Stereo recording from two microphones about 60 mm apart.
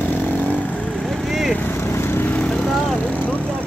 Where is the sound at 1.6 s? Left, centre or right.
Left.